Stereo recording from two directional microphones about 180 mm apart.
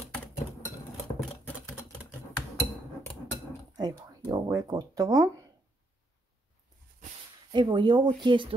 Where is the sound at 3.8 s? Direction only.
20° right (ahead or behind).